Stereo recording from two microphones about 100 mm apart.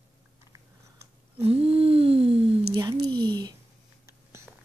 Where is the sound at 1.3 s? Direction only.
80° right.